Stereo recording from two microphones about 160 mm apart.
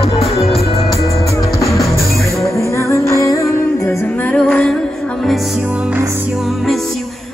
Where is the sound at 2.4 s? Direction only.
15° left (ahead or behind).